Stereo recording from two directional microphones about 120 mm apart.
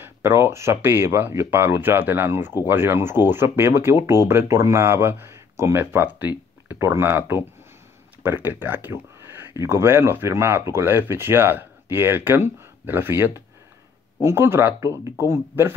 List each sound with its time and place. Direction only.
0.0 s speech: 20° right (ahead or behind)